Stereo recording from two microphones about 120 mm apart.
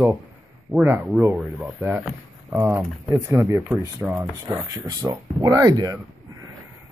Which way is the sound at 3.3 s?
25° right (ahead or behind).